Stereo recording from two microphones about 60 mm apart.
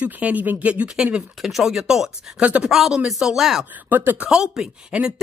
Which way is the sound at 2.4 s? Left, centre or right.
Right.